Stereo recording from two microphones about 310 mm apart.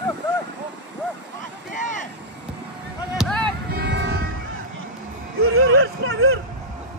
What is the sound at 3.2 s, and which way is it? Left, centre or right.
Basketball bounce, centre.